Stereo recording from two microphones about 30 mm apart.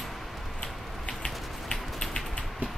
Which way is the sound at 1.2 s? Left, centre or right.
Left.